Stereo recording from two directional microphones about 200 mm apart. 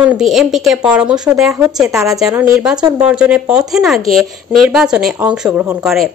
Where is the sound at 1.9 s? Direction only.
15° right (ahead or behind).